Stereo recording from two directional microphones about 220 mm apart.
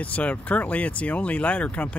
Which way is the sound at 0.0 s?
5° left (ahead or behind).